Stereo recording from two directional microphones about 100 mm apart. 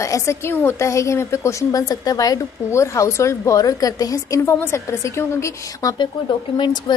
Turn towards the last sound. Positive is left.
turn(degrees=50)  # may be behind; listen again after turning